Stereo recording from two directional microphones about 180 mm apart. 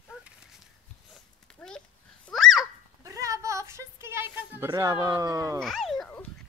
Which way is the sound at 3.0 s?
20° right (ahead or behind).